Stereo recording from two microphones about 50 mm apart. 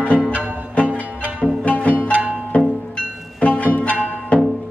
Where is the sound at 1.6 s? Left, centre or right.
Left.